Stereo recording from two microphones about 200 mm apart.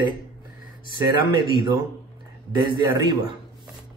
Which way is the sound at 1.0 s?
20° right (ahead or behind).